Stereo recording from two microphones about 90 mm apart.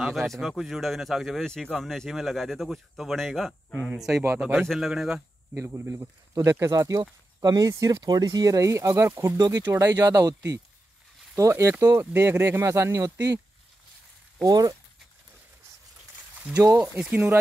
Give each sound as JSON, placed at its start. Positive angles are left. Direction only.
{"t": 0.0, "sound": "speech", "side_deg": 0}
{"t": 4.1, "sound": "speech", "side_deg": -25}
{"t": 4.6, "sound": "speech", "side_deg": 0}
{"t": 5.5, "sound": "speech", "side_deg": -30}
{"t": 14.4, "sound": "speech", "side_deg": -45}
{"t": 17.1, "sound": "speech", "side_deg": -20}